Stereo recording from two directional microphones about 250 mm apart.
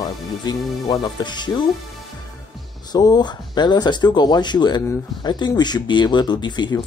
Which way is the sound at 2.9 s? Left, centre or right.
Centre.